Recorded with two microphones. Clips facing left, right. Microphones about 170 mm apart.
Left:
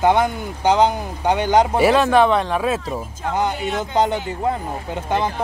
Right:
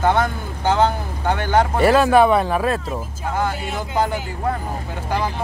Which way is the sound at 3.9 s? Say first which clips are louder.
Left 2 dB; 20° left (ahead or behind).